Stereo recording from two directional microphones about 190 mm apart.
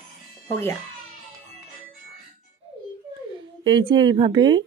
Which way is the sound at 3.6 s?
25° right (ahead or behind).